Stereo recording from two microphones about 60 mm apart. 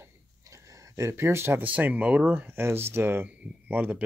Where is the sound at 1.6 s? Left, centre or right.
Right.